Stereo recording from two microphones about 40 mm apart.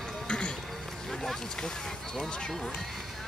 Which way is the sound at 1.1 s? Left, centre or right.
Centre.